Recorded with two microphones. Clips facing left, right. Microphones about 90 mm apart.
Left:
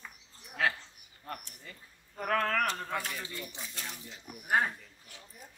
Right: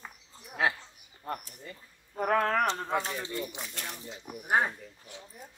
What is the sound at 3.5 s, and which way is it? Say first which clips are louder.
Speech: right 3 dB; 65° right (ahead or behind).